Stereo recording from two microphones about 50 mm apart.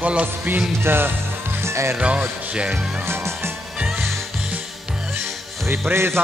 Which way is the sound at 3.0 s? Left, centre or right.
Right.